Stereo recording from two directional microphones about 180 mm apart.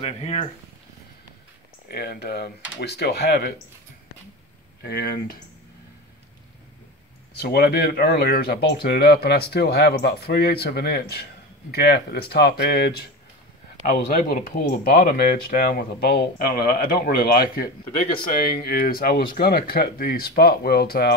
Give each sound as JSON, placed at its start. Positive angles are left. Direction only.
{"t": 0.0, "sound": "speech", "side_deg": 35}
{"t": 1.9, "sound": "speech", "side_deg": 60}
{"t": 4.8, "sound": "speech", "side_deg": 65}
{"t": 7.3, "sound": "speech", "side_deg": 60}
{"t": 14.0, "sound": "speech", "side_deg": 45}